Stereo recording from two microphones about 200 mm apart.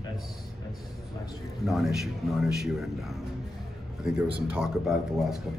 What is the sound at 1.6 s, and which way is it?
A man's voice, centre (ahead or behind).